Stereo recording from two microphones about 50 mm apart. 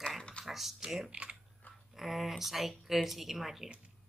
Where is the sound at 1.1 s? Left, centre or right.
Right.